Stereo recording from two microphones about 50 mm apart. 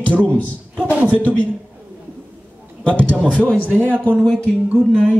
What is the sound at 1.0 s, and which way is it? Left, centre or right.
Speech, left.